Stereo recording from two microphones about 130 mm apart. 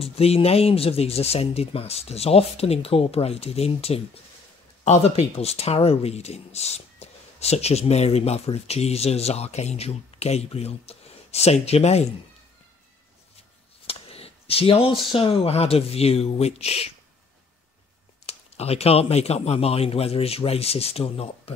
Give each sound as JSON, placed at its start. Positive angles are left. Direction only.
{"t": 0.0, "sound": "speech", "side_deg": 50}
{"t": 13.8, "sound": "a sound", "side_deg": 50}
{"t": 15.1, "sound": "speech", "side_deg": 45}
{"t": 18.2, "sound": "speech", "side_deg": 50}